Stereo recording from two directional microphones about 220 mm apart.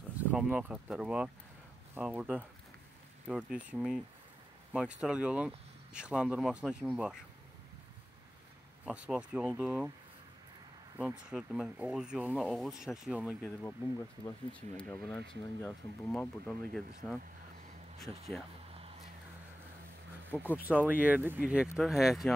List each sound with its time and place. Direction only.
0.2 s speech: 5° right (ahead or behind)
8.8 s speech: 5° right (ahead or behind)
11.0 s speech: 5° right (ahead or behind)
13.4 s speech: 10° left (ahead or behind)
18.7 s a sound: 25° right (ahead or behind)
20.5 s speech: 10° right (ahead or behind)